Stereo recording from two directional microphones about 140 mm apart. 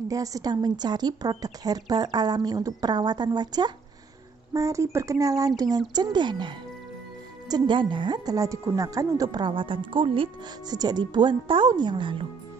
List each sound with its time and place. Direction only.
0.1 s a woman's voice: 25° right (ahead or behind)